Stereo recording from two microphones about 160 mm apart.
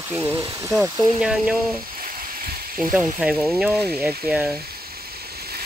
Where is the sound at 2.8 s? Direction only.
5° right (ahead or behind).